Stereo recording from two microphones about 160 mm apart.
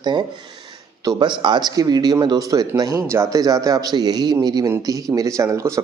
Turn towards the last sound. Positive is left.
turn(degrees=-20)  # may be behind; listen again after turning